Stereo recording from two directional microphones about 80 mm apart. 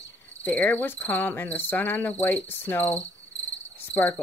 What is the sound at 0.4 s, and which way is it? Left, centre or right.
Cricket, centre.